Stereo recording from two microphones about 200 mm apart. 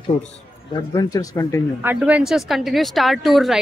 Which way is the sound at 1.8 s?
10° right (ahead or behind).